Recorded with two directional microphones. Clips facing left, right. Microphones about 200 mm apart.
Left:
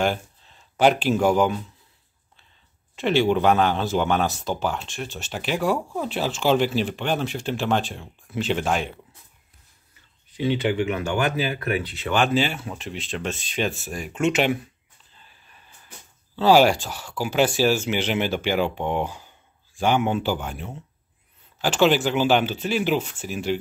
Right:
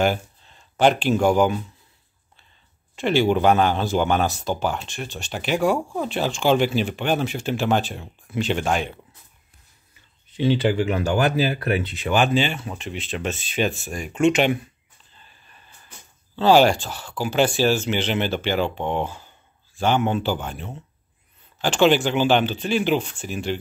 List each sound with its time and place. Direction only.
0.0 s speech: centre (ahead or behind)
3.0 s speech: centre (ahead or behind)
10.3 s speech: 30° right (ahead or behind)
11.9 s speech: 15° right (ahead or behind)
12.2 s speech: 5° left (ahead or behind)
15.2 s a sound: 5° left (ahead or behind)
16.3 s speech: 5° left (ahead or behind)